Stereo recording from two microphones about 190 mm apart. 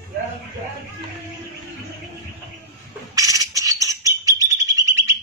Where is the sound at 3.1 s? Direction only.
20° right (ahead or behind).